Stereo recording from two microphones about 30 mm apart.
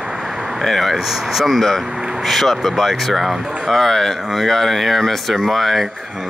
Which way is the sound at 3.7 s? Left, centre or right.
Centre.